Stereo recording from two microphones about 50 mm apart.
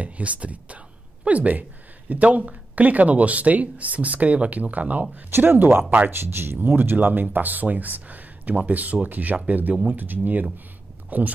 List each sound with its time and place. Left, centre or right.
0.0 s speech: right
5.3 s speech: right